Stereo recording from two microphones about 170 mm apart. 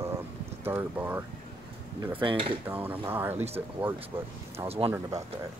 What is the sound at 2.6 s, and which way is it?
Speech, 10° right (ahead or behind).